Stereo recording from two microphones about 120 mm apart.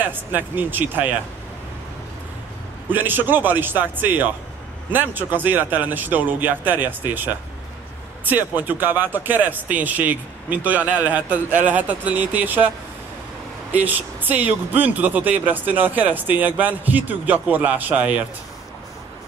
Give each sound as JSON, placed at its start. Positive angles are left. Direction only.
{"t": 0.0, "sound": "speech", "side_deg": -15}
{"t": 2.9, "sound": "speech", "side_deg": -15}
{"t": 8.3, "sound": "speech", "side_deg": -15}
{"t": 13.7, "sound": "speech", "side_deg": -15}